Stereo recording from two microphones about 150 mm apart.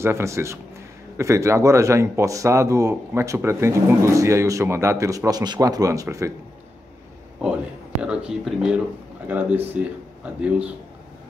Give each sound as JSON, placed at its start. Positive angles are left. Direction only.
{"t": 0.0, "sound": "speech", "side_deg": -20}
{"t": 8.0, "sound": "speech", "side_deg": -5}